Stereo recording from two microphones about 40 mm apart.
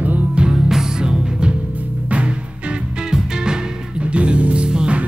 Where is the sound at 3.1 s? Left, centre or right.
Centre.